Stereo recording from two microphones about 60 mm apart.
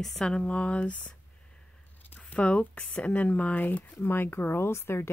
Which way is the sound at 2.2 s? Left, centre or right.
Left.